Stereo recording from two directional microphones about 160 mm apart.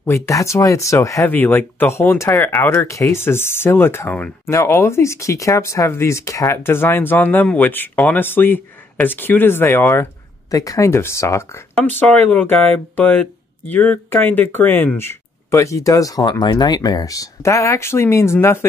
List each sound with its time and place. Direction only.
0.0 s speech: 20° left (ahead or behind)